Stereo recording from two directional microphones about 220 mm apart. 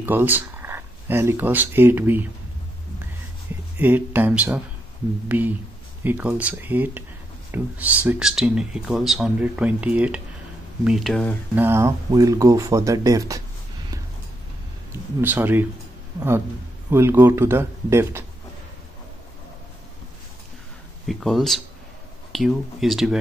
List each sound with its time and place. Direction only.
0.0 s speech: 10° right (ahead or behind)
3.7 s speech: 10° right (ahead or behind)
6.0 s speech: 5° right (ahead or behind)
11.6 s speech: 10° right (ahead or behind)
15.1 s speech: 10° right (ahead or behind)
21.1 s speech: centre (ahead or behind)